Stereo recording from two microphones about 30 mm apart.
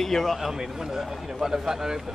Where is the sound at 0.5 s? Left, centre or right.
Right.